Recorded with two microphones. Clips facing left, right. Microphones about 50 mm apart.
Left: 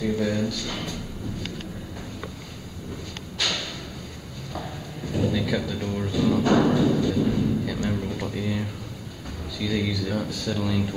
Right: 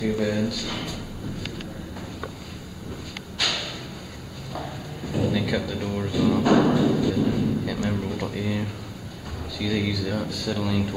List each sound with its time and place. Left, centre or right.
0.0 s speech: centre
3.3 s a sound: centre
4.5 s music: centre
9.6 s speech: centre